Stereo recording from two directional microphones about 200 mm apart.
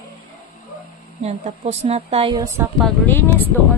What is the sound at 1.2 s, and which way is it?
A woman's voice, 35° right (ahead or behind).